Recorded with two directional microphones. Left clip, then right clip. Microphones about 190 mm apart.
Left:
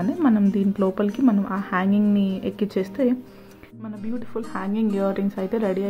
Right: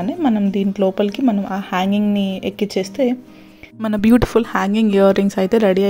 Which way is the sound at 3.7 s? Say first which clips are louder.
Right 18 dB; 70° right (ahead or behind).